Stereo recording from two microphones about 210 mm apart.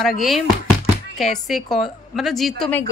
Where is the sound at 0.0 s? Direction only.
Centre (ahead or behind).